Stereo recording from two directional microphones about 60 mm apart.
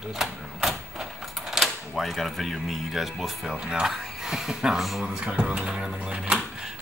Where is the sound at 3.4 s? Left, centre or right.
Centre.